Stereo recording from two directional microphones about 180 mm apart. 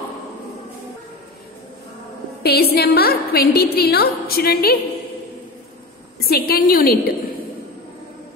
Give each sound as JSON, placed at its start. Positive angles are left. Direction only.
{"t": 2.4, "sound": "a woman's voice", "side_deg": 60}
{"t": 6.1, "sound": "a woman's voice", "side_deg": 60}